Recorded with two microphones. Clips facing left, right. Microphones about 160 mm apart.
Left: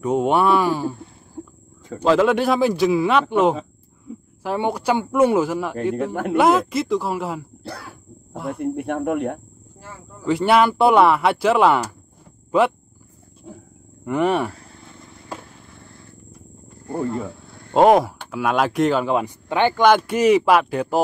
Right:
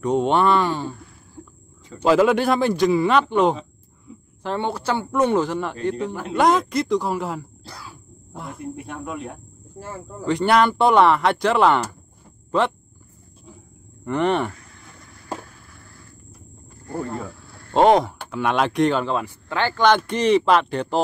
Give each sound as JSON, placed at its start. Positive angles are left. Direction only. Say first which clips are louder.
{"t": 0.0, "sound": "speech", "louder": "left 1 dB", "side_deg": 5}
{"t": 2.0, "sound": "speech", "louder": "even", "side_deg": -5}
{"t": 7.6, "sound": "insect", "louder": "left 6 dB", "side_deg": 60}
{"t": 8.5, "sound": "speech", "louder": "left 9 dB", "side_deg": 60}
{"t": 10.2, "sound": "speech", "louder": "left 1 dB", "side_deg": 5}
{"t": 12.4, "sound": "a sound", "louder": "left 3 dB", "side_deg": 10}
{"t": 13.5, "sound": "wild animals", "louder": "left 7 dB", "side_deg": 55}
{"t": 14.0, "sound": "speech", "louder": "left 1 dB", "side_deg": 5}
{"t": 14.6, "sound": "vehicle", "louder": "left 4 dB", "side_deg": 30}
{"t": 16.8, "sound": "wild animals", "louder": "left 4 dB", "side_deg": 20}
{"t": 17.7, "sound": "speech", "louder": "left 2 dB", "side_deg": 5}